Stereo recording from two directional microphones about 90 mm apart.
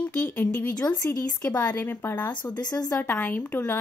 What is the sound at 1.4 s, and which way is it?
Speech, 35° left (ahead or behind).